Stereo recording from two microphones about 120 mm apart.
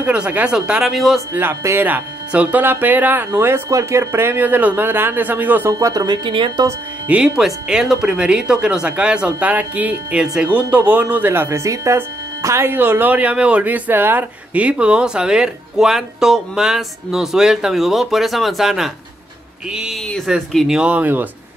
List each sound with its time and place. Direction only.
0.0 s speech: 10° right (ahead or behind)
1.3 s speech: 20° right (ahead or behind)
5.7 s speech: 25° right (ahead or behind)
7.1 s speech: 5° right (ahead or behind)